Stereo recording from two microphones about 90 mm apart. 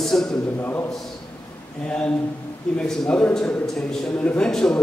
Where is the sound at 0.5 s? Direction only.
25° left (ahead or behind).